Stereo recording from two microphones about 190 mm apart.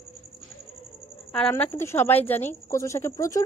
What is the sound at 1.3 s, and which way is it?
A woman's voice, 5° left (ahead or behind).